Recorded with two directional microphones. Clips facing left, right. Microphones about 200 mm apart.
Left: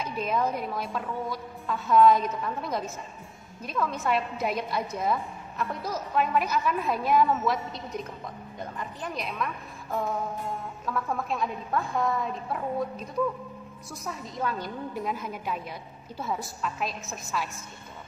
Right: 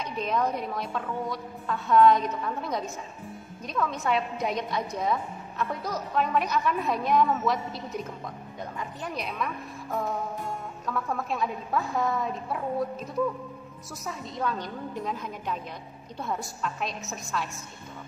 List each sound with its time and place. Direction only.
0.0 s a woman's voice: 5° left (ahead or behind)